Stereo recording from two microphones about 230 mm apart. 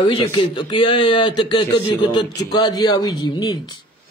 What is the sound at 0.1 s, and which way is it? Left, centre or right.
A man's voice, left.